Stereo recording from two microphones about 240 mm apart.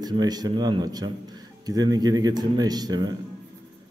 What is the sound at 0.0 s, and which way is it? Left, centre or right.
A man's voice, centre.